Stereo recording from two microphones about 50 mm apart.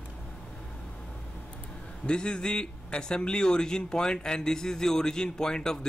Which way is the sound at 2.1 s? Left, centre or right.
Centre.